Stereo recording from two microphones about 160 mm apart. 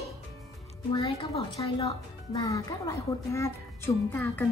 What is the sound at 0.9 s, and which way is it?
A woman's voice, 35° left (ahead or behind).